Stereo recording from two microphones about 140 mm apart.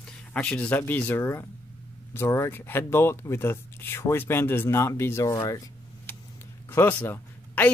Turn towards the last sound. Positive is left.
turn(degrees=15)  # may be behind; listen again after turning